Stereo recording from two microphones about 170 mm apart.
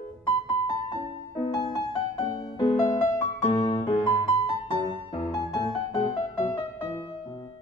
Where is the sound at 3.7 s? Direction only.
35° left (ahead or behind).